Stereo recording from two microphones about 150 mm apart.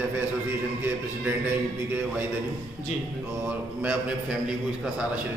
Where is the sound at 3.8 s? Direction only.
10° right (ahead or behind).